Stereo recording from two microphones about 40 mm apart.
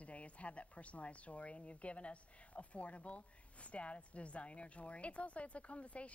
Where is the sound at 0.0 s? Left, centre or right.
Left.